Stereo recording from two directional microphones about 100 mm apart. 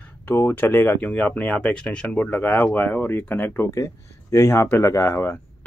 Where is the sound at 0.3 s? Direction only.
20° left (ahead or behind).